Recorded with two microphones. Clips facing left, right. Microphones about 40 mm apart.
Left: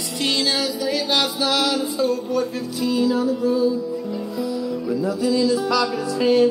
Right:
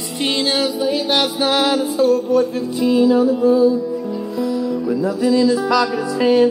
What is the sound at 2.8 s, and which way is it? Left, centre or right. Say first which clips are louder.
Music: right 6 dB; right.